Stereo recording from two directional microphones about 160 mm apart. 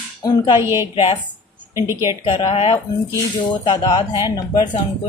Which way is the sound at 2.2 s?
30° left (ahead or behind).